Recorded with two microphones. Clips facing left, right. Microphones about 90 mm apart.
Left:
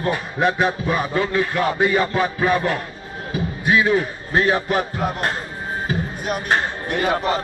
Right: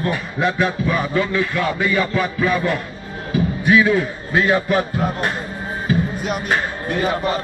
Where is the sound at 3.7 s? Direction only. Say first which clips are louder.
Right 2 dB; 25° left (ahead or behind).